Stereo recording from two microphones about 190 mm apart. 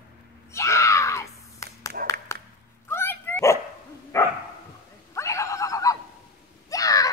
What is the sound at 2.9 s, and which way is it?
Dog, 10° left (ahead or behind).